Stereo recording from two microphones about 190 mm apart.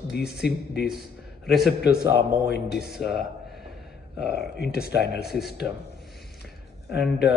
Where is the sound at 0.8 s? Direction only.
Centre (ahead or behind).